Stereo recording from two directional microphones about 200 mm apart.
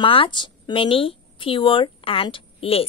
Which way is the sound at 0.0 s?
25° left (ahead or behind).